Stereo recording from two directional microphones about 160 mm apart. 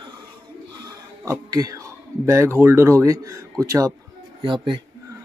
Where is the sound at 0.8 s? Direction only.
20° right (ahead or behind).